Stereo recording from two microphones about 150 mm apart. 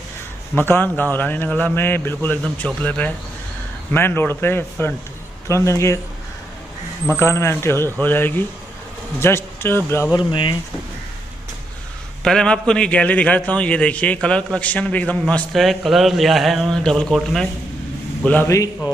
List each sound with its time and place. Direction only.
0.6 s a man's voice: 15° left (ahead or behind)
7.2 s a man's voice: 20° left (ahead or behind)
10.1 s speech: 30° left (ahead or behind)
12.2 s a man's voice: 5° left (ahead or behind)